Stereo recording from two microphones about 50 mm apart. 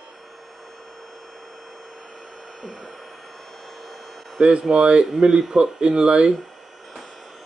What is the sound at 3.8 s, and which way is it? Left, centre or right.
Hum, centre.